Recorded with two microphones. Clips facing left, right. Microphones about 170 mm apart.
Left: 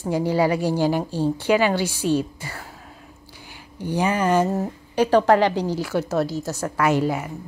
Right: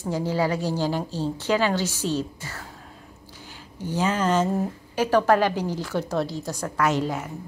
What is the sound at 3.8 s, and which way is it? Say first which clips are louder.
Speech: left 2 dB; 15° left (ahead or behind).